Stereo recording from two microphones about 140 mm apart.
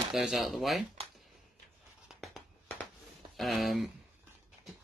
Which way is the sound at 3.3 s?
Centre (ahead or behind).